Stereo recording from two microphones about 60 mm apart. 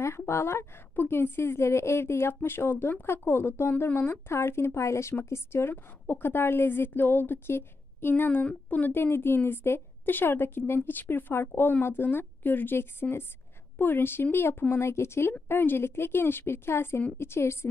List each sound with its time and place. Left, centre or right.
0.3 s a woman's voice: left